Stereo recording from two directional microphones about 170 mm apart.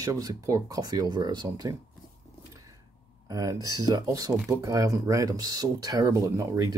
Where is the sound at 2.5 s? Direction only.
20° right (ahead or behind).